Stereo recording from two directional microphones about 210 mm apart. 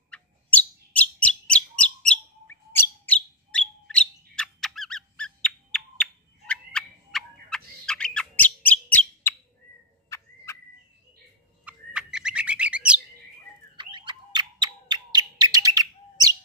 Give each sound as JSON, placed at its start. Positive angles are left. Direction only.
{"t": 0.9, "sound": "bird", "side_deg": 5}
{"t": 8.8, "sound": "mouse", "side_deg": 5}
{"t": 10.0, "sound": "turkey", "side_deg": 15}
{"t": 11.6, "sound": "bird", "side_deg": -5}
{"t": 13.7, "sound": "bird", "side_deg": -20}